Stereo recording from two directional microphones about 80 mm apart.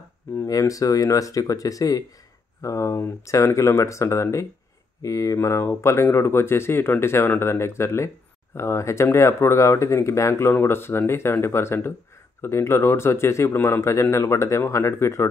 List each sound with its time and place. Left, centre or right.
0.5 s speech: left